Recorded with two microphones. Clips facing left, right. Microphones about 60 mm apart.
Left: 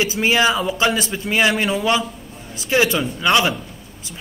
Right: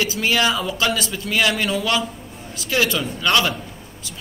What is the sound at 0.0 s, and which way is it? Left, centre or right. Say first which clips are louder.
A man's voice: left 3 dB; left.